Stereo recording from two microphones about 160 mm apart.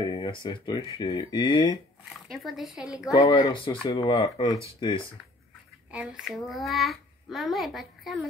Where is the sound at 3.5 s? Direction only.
35° left (ahead or behind).